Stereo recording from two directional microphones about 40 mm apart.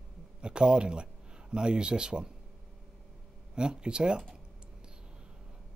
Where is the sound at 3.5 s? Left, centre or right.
Right.